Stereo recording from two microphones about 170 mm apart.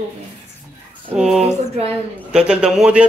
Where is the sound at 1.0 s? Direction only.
5° right (ahead or behind).